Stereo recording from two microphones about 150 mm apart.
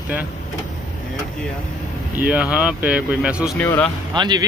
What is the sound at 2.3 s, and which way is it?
Speech, 5° right (ahead or behind).